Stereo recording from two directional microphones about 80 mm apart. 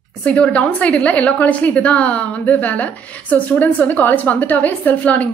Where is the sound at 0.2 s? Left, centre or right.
Centre.